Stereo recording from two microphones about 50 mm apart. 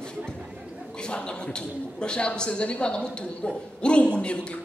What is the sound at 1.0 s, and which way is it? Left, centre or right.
A woman's voice, centre.